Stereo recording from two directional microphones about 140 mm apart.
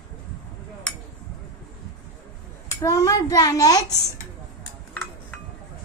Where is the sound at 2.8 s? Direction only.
25° left (ahead or behind).